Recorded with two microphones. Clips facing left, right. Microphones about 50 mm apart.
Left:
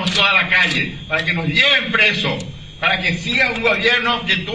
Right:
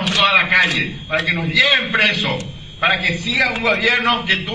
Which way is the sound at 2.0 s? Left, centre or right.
Right.